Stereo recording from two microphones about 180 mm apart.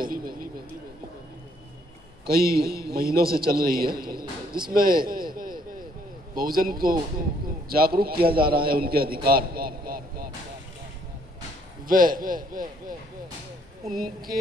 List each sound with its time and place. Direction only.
0.0 s vehicle: 55° right (ahead or behind)
2.2 s a man's voice: 55° right (ahead or behind)
4.6 s a sound: 55° right (ahead or behind)
6.3 s a man's voice: 50° right (ahead or behind)
11.9 s a man's voice: 50° right (ahead or behind)
13.9 s a man's voice: 55° right (ahead or behind)